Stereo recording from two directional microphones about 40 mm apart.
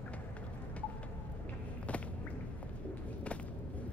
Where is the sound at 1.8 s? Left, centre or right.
Left.